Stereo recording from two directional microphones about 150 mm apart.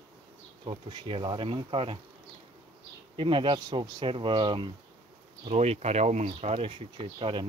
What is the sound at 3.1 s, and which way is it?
Speech, 35° right (ahead or behind).